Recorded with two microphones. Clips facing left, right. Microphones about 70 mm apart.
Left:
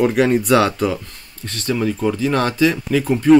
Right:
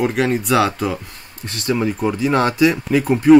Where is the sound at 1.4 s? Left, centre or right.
Centre.